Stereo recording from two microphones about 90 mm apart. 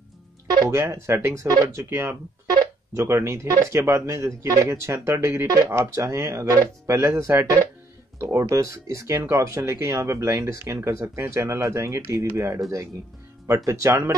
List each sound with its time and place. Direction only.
0.7 s speech: 30° right (ahead or behind)
13.7 s speech: 30° right (ahead or behind)